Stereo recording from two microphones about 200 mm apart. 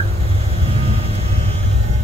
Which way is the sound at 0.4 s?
30° right (ahead or behind).